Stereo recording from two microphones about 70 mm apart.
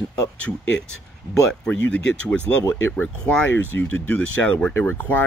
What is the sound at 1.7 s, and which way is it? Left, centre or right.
Speech, left.